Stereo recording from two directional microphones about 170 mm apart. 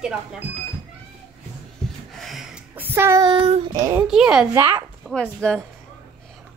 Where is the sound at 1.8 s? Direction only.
5° left (ahead or behind); by 3.2 s 15° right (ahead or behind).